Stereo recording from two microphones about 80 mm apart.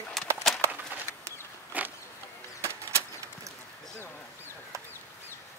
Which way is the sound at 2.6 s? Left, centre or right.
Right.